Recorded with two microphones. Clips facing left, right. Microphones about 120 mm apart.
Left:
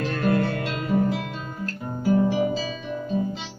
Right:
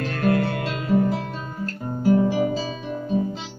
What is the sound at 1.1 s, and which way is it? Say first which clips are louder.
Guitar: right 2 dB; 40° right (ahead or behind).